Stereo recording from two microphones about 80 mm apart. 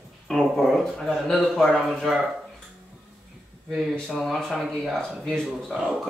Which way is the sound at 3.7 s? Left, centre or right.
Centre.